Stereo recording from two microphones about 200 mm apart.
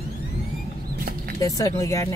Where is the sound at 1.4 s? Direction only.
15° left (ahead or behind).